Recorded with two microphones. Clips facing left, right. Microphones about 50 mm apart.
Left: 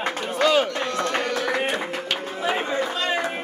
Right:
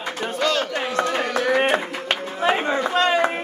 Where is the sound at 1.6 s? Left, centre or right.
Right.